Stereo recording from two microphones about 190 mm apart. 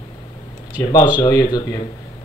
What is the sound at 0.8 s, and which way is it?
Speech, 20° left (ahead or behind).